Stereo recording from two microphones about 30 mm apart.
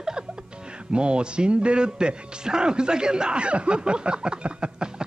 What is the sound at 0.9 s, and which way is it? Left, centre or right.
A man's voice, right.